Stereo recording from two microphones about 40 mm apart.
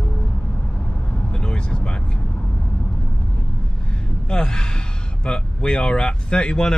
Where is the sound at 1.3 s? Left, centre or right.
Left.